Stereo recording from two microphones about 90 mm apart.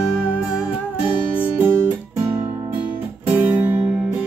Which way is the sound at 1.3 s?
20° right (ahead or behind).